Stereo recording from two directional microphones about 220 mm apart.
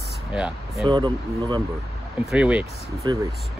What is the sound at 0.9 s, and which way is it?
Speech, 15° right (ahead or behind).